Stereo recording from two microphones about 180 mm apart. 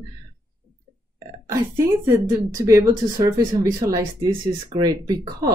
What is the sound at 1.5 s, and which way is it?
Speech, 15° right (ahead or behind).